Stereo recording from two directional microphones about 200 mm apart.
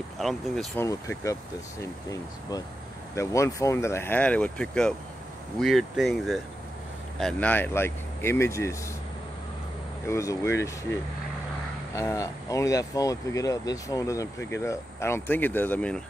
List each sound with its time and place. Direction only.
0.2 s speech: centre (ahead or behind)
0.7 s speech: 15° left (ahead or behind)
10.0 s speech: 15° left (ahead or behind)